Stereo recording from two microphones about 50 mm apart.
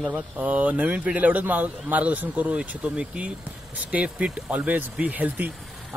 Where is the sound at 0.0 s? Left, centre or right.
Right.